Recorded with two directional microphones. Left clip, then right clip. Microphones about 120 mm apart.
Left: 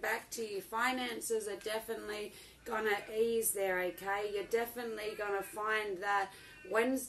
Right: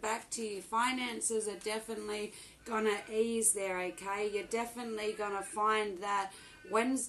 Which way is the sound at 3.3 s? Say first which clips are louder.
Left 1 dB; 30° right (ahead or behind).